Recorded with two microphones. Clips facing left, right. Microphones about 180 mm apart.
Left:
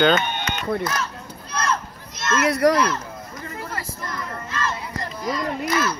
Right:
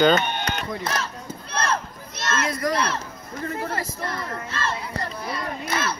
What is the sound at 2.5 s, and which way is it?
Speech, 70° left (ahead or behind).